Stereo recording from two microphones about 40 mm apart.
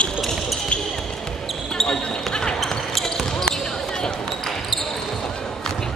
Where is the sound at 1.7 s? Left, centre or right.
Centre.